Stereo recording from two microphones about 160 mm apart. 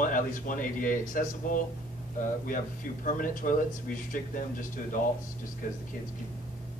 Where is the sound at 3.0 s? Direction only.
55° left (ahead or behind).